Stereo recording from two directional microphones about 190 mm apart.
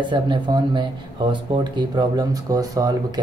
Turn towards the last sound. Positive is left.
turn(degrees=-20)  # may be behind; listen again after turning